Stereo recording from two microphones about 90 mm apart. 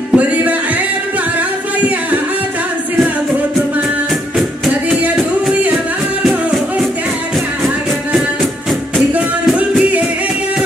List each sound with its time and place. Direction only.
0.1 s music: 15° right (ahead or behind)
4.8 s music: 10° right (ahead or behind)
6.2 s music: 5° right (ahead or behind)
9.6 s music: 15° right (ahead or behind)